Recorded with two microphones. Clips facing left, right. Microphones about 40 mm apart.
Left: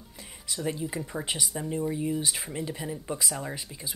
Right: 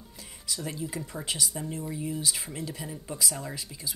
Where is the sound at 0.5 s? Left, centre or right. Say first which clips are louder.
Left 3 dB; left.